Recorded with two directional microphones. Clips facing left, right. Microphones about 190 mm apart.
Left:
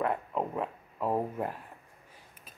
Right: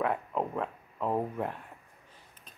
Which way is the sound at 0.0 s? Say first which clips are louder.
Even; centre (ahead or behind).